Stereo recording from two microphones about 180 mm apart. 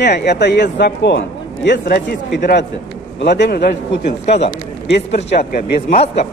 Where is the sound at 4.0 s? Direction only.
40° left (ahead or behind).